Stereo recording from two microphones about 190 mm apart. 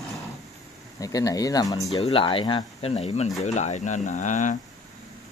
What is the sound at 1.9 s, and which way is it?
Speech, 30° left (ahead or behind).